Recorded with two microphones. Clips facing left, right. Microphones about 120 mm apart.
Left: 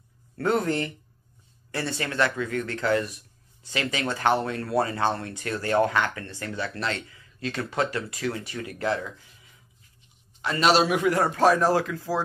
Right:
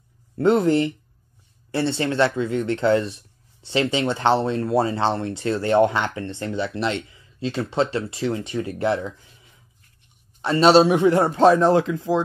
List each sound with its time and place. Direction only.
0.4 s speech: 25° right (ahead or behind)
10.4 s speech: 30° right (ahead or behind)